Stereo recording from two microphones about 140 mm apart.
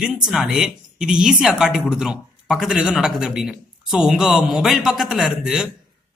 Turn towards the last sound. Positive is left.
turn(degrees=-5)  # may be behind; listen again after turning